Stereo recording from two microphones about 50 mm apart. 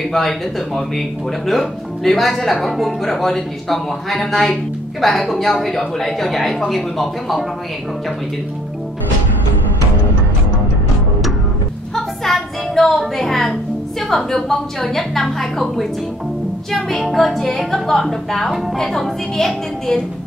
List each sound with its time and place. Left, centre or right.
0.1 s speech: centre
11.9 s music: centre
14.1 s a woman's voice: centre
17.0 s speech: centre